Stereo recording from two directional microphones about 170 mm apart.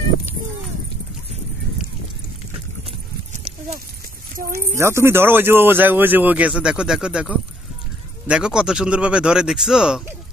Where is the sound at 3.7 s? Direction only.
60° right (ahead or behind).